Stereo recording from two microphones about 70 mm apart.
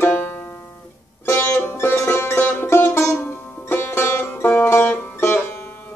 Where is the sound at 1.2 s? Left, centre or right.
Left.